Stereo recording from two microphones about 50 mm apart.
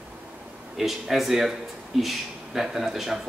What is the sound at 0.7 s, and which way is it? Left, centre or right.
A man's voice, centre.